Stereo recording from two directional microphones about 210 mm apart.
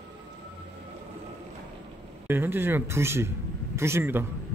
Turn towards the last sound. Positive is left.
turn(degrees=-10)  # may be behind; listen again after turning